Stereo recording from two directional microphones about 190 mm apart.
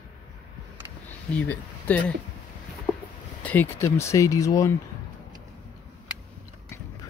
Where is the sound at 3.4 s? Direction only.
10° left (ahead or behind).